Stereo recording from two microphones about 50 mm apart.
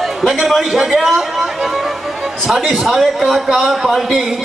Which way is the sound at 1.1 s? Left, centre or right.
Centre.